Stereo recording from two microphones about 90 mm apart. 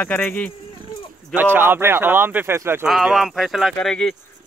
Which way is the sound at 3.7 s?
5° left (ahead or behind).